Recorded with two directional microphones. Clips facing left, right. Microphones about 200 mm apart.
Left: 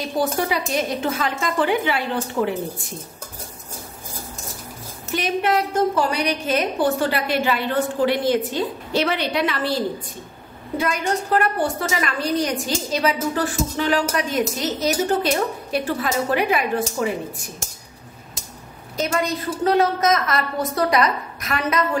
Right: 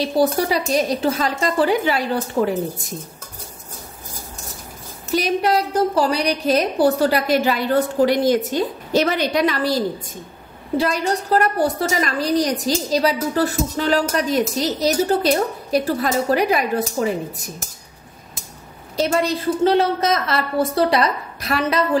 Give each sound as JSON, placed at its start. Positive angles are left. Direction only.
{"t": 0.0, "sound": "a woman's voice", "side_deg": -35}
{"t": 5.1, "sound": "a woman's voice", "side_deg": -40}
{"t": 18.9, "sound": "a woman's voice", "side_deg": -30}